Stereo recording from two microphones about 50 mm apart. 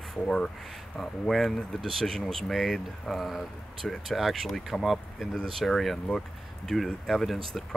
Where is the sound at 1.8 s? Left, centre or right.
Centre.